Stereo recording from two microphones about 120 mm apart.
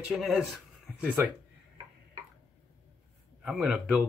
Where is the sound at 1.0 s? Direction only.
15° right (ahead or behind).